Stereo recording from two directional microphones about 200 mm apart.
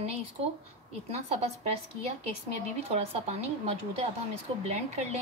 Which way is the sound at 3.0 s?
30° right (ahead or behind).